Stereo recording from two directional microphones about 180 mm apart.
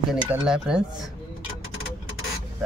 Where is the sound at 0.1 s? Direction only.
5° right (ahead or behind).